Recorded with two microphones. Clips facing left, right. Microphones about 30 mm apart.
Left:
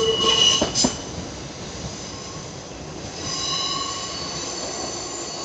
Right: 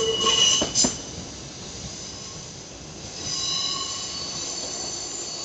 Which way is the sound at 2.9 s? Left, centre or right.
Centre.